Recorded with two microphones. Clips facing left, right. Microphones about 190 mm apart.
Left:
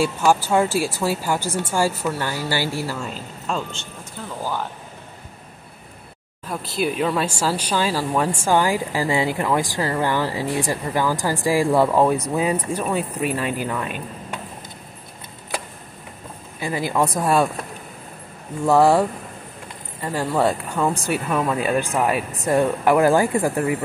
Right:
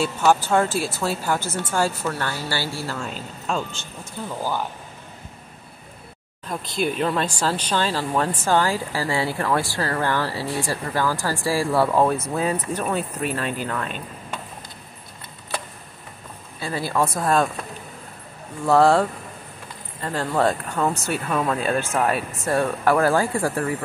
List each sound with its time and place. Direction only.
0.0 s speech: 10° left (ahead or behind)
3.0 s speech: centre (ahead or behind)
6.4 s speech: 5° left (ahead or behind)
16.5 s speech: 15° left (ahead or behind)
18.7 s speech: 15° left (ahead or behind)